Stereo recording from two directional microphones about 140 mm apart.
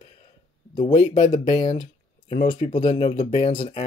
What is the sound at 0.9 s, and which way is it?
Speech, 55° left (ahead or behind).